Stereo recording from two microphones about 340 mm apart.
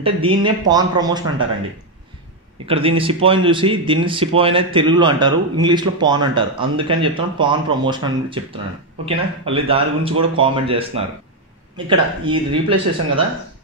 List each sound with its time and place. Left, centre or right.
0.0 s speech: centre
2.6 s speech: centre